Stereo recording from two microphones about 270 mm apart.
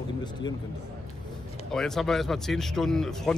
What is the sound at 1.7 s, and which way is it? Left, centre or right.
Speech, centre.